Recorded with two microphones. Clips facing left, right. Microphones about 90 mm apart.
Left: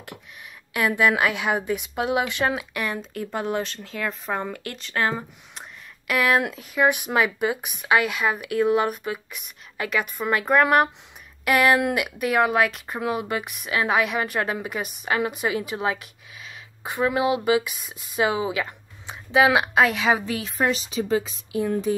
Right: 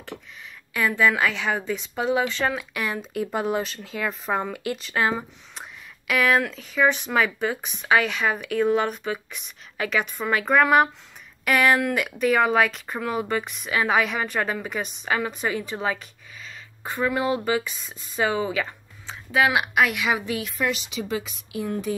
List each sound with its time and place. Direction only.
0.7 s a woman's voice: 15° left (ahead or behind)
2.7 s speech: centre (ahead or behind)
5.5 s a sound: centre (ahead or behind)
6.5 s a woman's voice: 10° left (ahead or behind)
19.0 s a woman's voice: 20° left (ahead or behind)